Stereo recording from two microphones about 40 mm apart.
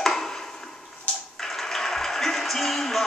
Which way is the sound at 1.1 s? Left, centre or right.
Left.